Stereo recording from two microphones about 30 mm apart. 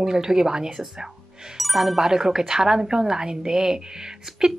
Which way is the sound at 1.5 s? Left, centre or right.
Centre.